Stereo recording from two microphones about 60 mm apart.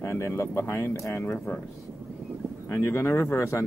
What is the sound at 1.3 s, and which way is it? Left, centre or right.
Speech, left.